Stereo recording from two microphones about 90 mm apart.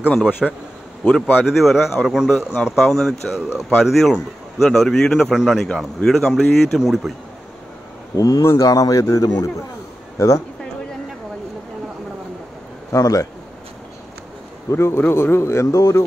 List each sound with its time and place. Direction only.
0.4 s a man's voice: centre (ahead or behind)
1.0 s speech: 20° left (ahead or behind)
1.5 s a man's voice: centre (ahead or behind)
8.2 s a man's voice: 35° left (ahead or behind)
12.9 s speech: 40° left (ahead or behind)
14.7 s speech: 30° left (ahead or behind)